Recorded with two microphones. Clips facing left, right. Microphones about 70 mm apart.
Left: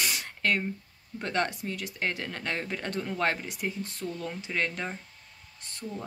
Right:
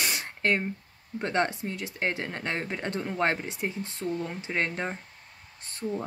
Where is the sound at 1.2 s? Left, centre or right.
Right.